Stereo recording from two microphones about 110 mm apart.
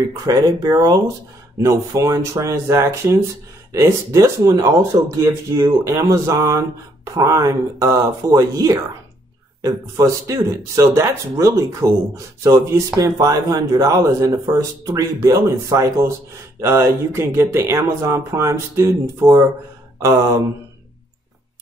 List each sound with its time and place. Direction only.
0.3 s speech: 35° right (ahead or behind)
1.6 s speech: 25° right (ahead or behind)